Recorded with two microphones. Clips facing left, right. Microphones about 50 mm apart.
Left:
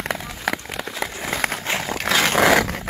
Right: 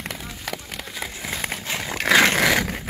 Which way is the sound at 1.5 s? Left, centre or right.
Left.